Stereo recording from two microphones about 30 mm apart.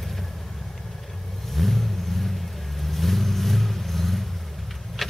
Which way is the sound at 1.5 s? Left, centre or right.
Centre.